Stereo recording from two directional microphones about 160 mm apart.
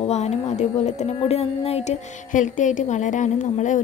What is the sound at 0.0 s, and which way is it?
Speech, 45° left (ahead or behind).